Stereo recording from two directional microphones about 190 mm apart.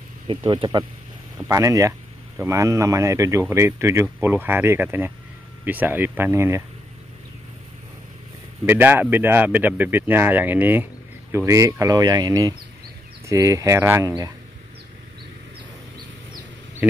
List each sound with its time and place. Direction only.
0.3 s speech: 25° right (ahead or behind)
8.6 s speech: 10° right (ahead or behind)
16.8 s speech: 10° right (ahead or behind)